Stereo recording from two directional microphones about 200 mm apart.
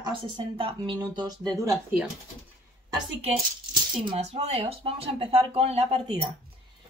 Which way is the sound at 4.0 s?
30° right (ahead or behind).